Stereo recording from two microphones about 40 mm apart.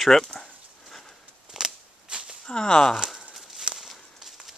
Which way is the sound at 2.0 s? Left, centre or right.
Right.